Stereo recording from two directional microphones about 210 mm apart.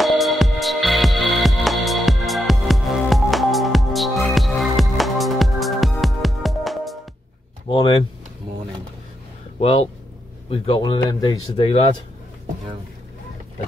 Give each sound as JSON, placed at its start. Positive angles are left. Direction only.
{"t": 0.0, "sound": "music", "side_deg": 0}
{"t": 9.6, "sound": "speech", "side_deg": 25}